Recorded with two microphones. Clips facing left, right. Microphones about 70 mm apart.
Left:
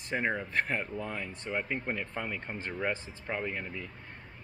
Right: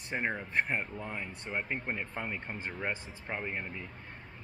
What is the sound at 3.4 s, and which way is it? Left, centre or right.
Speech, right.